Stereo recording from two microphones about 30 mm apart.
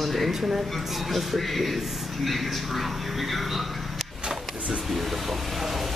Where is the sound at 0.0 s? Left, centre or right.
Centre.